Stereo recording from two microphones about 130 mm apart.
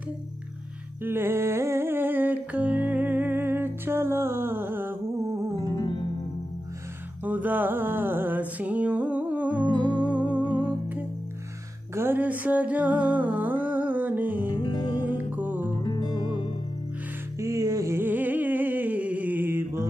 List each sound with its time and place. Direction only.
1.0 s music: 15° right (ahead or behind)
5.8 s music: 40° left (ahead or behind)
7.2 s music: 15° right (ahead or behind)
14.5 s music: 35° left (ahead or behind)
15.0 s music: 15° right (ahead or behind)
15.7 s music: 35° left (ahead or behind)
17.4 s a sound: 25° right (ahead or behind)